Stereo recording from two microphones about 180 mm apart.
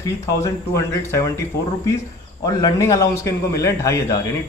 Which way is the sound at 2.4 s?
20° left (ahead or behind).